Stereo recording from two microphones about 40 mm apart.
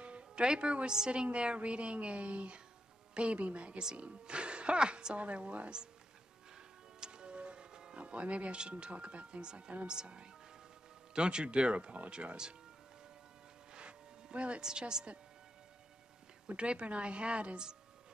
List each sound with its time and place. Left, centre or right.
0.0 s music: right
0.9 s a woman's voice: right
7.0 s music: right
8.0 s a woman's voice: right
13.7 s a sound: right
14.6 s a woman's voice: centre
16.5 s speech: right